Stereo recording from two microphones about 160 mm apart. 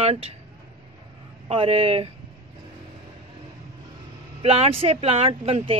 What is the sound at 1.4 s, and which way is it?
Speech, 35° right (ahead or behind).